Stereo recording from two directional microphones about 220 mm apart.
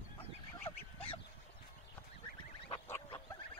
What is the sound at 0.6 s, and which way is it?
Duck, 25° left (ahead or behind).